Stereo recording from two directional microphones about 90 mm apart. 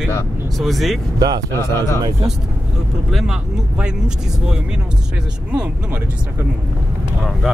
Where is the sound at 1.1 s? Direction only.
50° right (ahead or behind).